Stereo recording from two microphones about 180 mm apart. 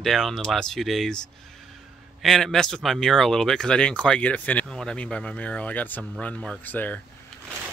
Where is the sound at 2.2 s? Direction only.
Centre (ahead or behind).